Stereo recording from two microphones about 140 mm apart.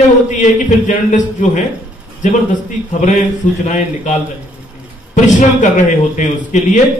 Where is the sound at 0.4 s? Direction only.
60° left (ahead or behind).